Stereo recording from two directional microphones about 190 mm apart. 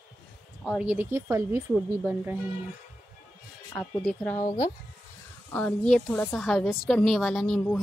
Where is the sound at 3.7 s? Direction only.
5° left (ahead or behind).